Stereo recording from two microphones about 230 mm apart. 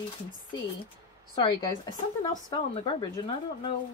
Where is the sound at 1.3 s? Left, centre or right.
Centre.